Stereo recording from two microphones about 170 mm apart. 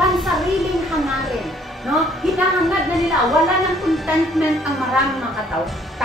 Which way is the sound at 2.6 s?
Centre (ahead or behind).